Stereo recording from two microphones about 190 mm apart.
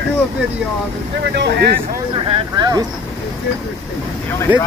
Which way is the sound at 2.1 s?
30° right (ahead or behind).